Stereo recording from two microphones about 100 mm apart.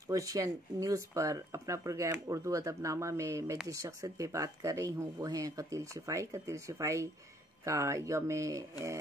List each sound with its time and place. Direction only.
0.1 s speech: 35° right (ahead or behind)